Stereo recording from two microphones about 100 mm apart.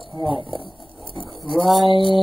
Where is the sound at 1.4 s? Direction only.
Centre (ahead or behind).